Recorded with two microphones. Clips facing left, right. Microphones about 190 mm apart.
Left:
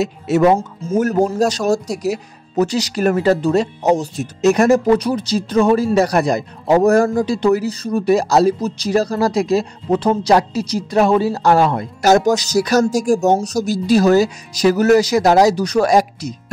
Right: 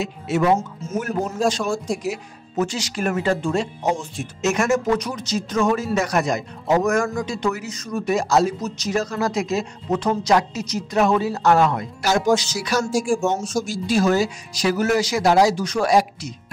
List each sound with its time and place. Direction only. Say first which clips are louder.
0.0 s speech: left 7 dB; 40° left (ahead or behind)